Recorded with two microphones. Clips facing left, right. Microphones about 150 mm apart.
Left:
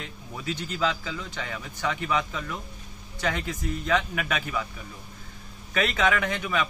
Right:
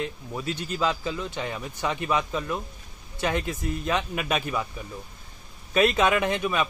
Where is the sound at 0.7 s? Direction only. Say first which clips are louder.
Right 1 dB; 20° right (ahead or behind).